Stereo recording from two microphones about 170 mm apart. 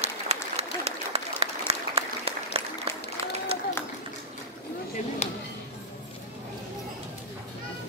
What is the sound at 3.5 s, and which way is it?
Run, 35° right (ahead or behind).